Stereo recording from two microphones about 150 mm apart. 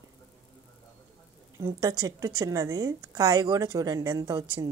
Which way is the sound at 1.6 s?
25° right (ahead or behind).